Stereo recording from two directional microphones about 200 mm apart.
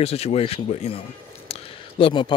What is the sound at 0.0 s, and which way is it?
Speech, 30° left (ahead or behind).